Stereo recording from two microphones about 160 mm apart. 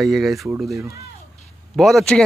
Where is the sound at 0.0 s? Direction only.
Centre (ahead or behind).